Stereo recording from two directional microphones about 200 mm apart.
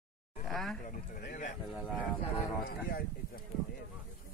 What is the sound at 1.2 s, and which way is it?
Speech, 40° left (ahead or behind).